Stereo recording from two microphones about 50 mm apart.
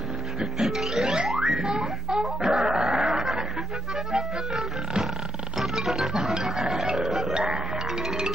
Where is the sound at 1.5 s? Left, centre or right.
Centre.